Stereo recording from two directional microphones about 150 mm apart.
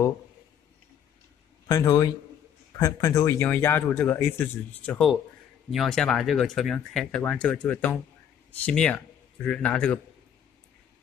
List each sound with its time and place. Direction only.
1.7 s a man's voice: 25° left (ahead or behind)
4.8 s speech: 5° left (ahead or behind)